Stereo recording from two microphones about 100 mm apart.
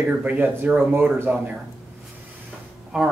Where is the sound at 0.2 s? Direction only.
15° right (ahead or behind).